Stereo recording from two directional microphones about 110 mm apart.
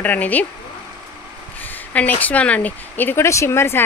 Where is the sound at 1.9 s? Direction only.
15° left (ahead or behind).